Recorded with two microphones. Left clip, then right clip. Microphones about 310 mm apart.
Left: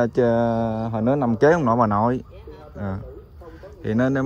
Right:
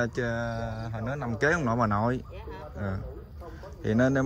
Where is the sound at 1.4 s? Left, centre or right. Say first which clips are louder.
Left 8 dB; centre.